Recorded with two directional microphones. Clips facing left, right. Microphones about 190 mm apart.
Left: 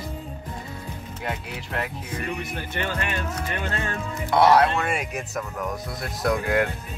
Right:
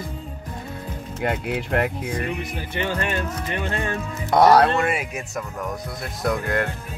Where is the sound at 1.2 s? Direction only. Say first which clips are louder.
Right 9 dB; 55° right (ahead or behind).